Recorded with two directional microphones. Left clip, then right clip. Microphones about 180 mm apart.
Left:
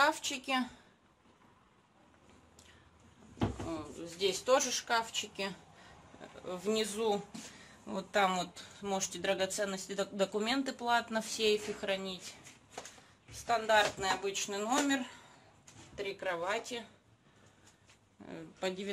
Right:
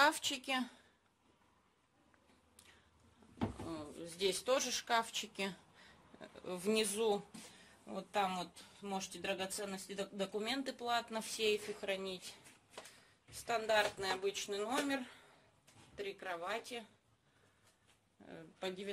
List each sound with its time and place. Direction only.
0.0 s a woman's voice: 25° right (ahead or behind)
3.6 s speech: 25° right (ahead or behind)
7.8 s speech: 5° left (ahead or behind)
13.3 s speech: 20° right (ahead or behind)
16.0 s speech: 5° right (ahead or behind)
18.2 s speech: centre (ahead or behind)